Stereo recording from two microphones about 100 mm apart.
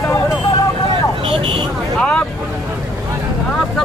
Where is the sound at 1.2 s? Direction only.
65° right (ahead or behind).